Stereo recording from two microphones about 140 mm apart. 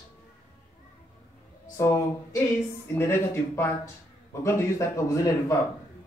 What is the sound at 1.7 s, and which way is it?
A man's voice, 20° left (ahead or behind).